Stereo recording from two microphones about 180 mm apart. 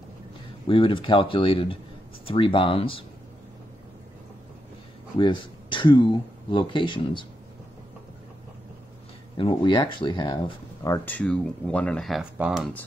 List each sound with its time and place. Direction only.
0.7 s speech: 30° left (ahead or behind)
5.1 s speech: 25° left (ahead or behind)
9.4 s speech: 25° left (ahead or behind); by 12.7 s 5° right (ahead or behind)